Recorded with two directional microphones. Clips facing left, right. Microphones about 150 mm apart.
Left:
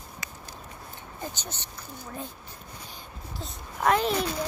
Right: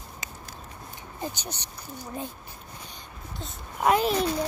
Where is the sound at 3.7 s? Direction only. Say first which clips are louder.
Right 1 dB; 15° right (ahead or behind).